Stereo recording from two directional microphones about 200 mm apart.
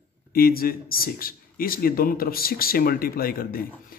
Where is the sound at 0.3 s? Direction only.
50° left (ahead or behind).